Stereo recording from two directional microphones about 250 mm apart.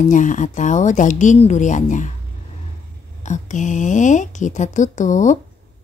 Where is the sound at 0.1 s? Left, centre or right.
Left.